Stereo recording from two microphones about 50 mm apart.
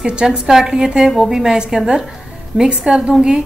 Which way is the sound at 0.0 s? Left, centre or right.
Centre.